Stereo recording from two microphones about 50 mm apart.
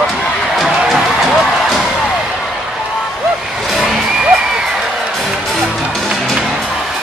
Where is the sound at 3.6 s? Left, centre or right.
Centre.